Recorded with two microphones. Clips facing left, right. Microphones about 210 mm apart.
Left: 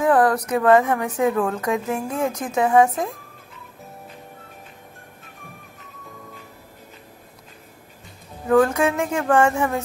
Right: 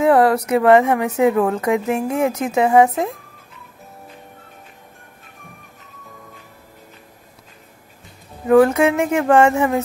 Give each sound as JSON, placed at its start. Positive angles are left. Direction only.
{"t": 0.0, "sound": "a sound", "side_deg": -25}
{"t": 0.5, "sound": "a woman's voice", "side_deg": -20}
{"t": 8.5, "sound": "a woman's voice", "side_deg": -20}